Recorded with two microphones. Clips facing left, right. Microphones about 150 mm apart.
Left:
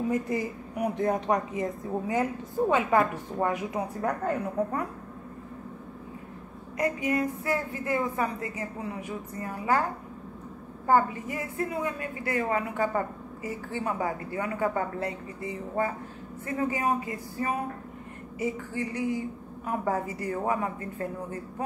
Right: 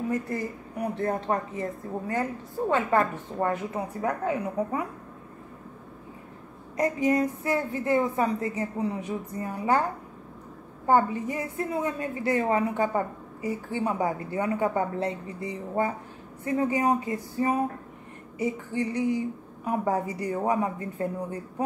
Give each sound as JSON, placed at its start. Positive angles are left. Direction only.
{"t": 0.1, "sound": "a woman's voice", "side_deg": 15}
{"t": 4.0, "sound": "a woman's voice", "side_deg": -5}
{"t": 6.8, "sound": "a sound", "side_deg": -35}
{"t": 7.4, "sound": "a woman's voice", "side_deg": -25}
{"t": 10.9, "sound": "a woman's voice", "side_deg": -25}